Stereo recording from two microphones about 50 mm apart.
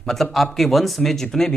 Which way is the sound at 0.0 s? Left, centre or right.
Centre.